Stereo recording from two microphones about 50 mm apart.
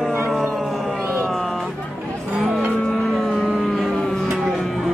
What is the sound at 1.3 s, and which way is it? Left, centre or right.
Vehicle, centre.